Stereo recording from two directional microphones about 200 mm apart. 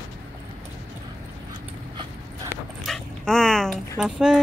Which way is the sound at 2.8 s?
5° left (ahead or behind).